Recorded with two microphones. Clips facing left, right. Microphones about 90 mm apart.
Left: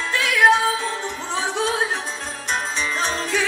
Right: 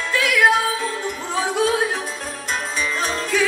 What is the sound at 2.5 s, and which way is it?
Music, 25° left (ahead or behind).